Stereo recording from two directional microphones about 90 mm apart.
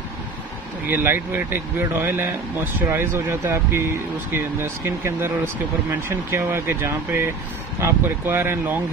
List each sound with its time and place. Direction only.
0.8 s speech: 25° right (ahead or behind)